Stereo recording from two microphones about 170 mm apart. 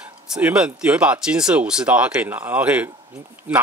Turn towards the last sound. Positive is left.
turn(degrees=-10)  # may be behind; listen again after turning